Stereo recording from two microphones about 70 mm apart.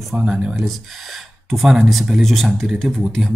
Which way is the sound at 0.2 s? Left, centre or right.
Centre.